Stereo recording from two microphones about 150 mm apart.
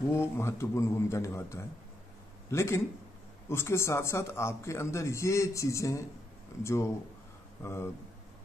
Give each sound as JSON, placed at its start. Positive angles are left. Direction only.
{"t": 0.1, "sound": "speech", "side_deg": 20}